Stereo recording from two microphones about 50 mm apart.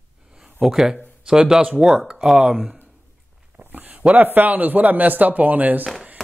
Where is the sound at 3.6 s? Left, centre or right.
Right.